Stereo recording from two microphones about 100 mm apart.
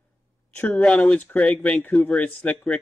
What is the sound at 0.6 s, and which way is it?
Speech, 15° left (ahead or behind).